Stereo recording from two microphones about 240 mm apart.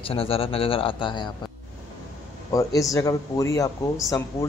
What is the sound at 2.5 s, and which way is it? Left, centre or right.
A woman's voice, centre.